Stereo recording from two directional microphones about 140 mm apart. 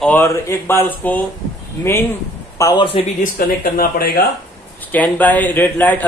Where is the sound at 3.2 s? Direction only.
90° left.